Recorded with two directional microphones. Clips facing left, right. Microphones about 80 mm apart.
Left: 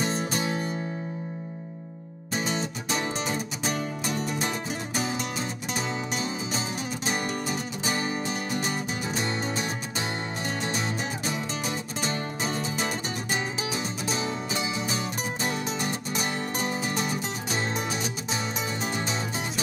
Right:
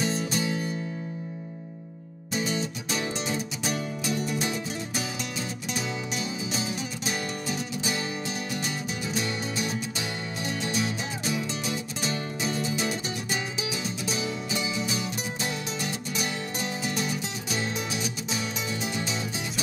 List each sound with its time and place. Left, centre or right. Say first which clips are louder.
0.0 s music: even; left
2.3 s music: even; left